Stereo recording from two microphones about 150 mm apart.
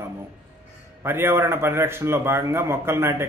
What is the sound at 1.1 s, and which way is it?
A man's voice, 15° right (ahead or behind).